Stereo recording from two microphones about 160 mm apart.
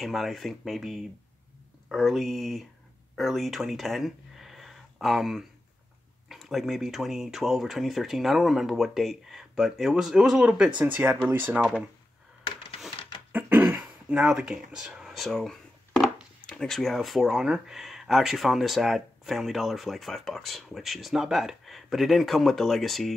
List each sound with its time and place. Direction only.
0.0 s speech: centre (ahead or behind)
12.9 s dog: 35° left (ahead or behind)
13.3 s throat clearing: 10° right (ahead or behind)
16.4 s speech: 5° left (ahead or behind)